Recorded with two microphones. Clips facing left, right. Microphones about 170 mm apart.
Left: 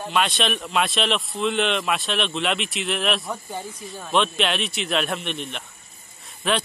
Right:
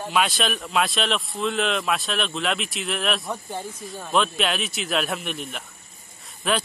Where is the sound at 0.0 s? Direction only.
Centre (ahead or behind).